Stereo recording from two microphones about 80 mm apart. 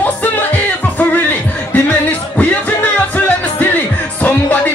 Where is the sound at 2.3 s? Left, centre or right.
Left.